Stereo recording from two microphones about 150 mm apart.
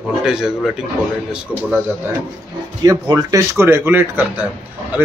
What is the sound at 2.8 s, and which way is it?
Speech, 25° right (ahead or behind).